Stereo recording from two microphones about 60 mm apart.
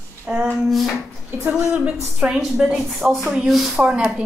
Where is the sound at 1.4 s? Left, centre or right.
Right.